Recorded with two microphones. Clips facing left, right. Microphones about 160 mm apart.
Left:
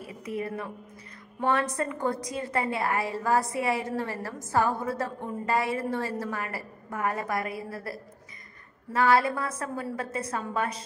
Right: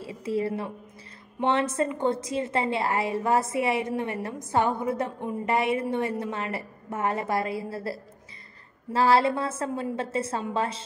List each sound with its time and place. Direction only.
0.0 s a woman's voice: 30° right (ahead or behind)